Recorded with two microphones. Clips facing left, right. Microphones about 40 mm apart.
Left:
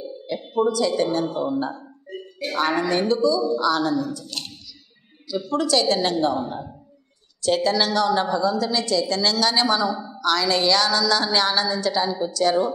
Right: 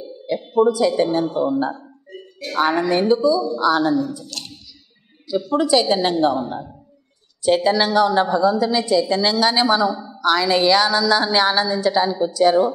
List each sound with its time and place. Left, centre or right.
0.4 s a woman's voice: centre
0.7 s a woman's voice: centre
5.5 s a woman's voice: centre
7.4 s a woman's voice: centre